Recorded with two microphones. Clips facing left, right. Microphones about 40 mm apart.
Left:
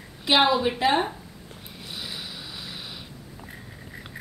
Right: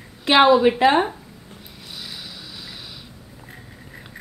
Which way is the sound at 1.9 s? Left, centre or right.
Centre.